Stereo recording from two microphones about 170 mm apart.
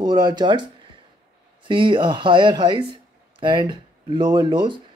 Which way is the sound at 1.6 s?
30° right (ahead or behind).